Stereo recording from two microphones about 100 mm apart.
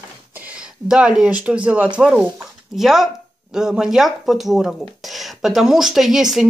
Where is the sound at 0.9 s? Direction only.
5° right (ahead or behind).